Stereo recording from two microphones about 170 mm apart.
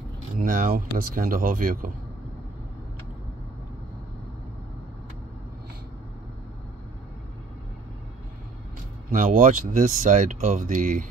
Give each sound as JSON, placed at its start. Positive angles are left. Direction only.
{"t": 0.4, "sound": "speech", "side_deg": -55}
{"t": 9.1, "sound": "speech", "side_deg": -50}